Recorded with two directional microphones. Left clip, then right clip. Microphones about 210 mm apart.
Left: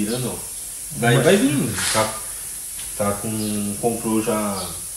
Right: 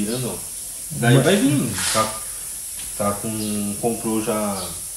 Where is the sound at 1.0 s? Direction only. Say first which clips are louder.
Left 1 dB; centre (ahead or behind).